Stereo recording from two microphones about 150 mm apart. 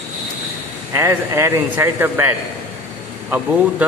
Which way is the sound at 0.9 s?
15° right (ahead or behind).